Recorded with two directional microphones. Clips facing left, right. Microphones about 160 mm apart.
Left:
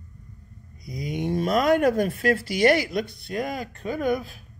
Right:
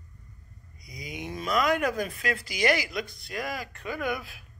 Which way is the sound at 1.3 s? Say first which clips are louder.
Left 5 dB; 50° left (ahead or behind).